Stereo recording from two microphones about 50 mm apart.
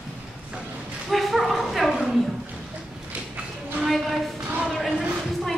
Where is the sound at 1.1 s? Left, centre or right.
Centre.